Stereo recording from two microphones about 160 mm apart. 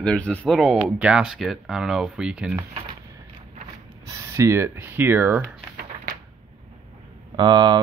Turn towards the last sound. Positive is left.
turn(degrees=-25)  # may be behind; listen again after turning